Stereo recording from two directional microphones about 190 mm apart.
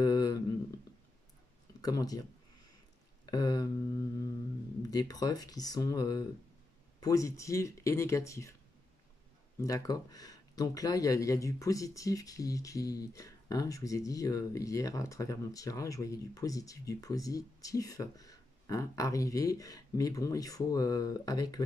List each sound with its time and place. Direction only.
0.0 s a sound: 20° left (ahead or behind)
1.8 s speech: 20° left (ahead or behind)
3.3 s speech: 20° left (ahead or behind)
4.8 s speech: 20° left (ahead or behind)
9.6 s speech: 15° left (ahead or behind)